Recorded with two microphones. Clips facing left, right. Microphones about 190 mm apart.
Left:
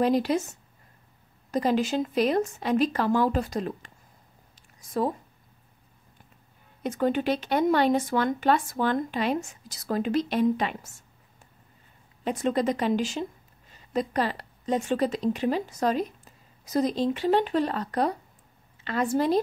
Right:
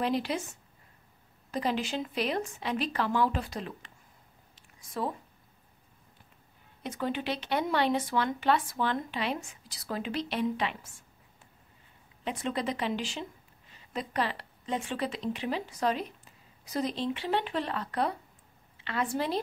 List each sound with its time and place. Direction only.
0.0 s speech: 40° left (ahead or behind)
6.8 s speech: 45° left (ahead or behind)
12.3 s a woman's voice: 45° left (ahead or behind)